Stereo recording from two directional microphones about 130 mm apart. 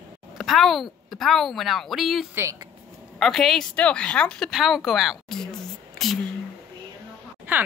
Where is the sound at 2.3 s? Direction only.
25° right (ahead or behind).